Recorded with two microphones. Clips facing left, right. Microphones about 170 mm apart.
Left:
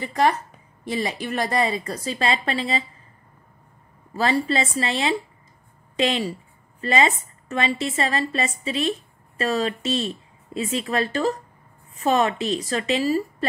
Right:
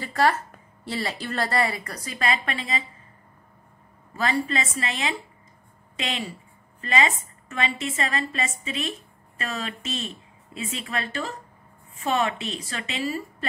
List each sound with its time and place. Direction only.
0.0 s a woman's voice: 20° left (ahead or behind)
4.1 s a woman's voice: 30° left (ahead or behind)